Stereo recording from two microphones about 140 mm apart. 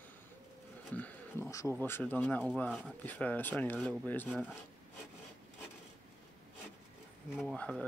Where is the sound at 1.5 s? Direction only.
25° left (ahead or behind).